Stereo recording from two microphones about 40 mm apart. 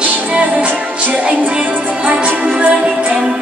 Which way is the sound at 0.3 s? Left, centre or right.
Right.